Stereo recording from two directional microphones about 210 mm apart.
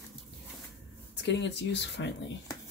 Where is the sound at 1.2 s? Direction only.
55° left (ahead or behind).